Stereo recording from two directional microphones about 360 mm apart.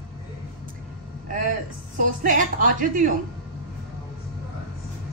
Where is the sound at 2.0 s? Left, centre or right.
Right.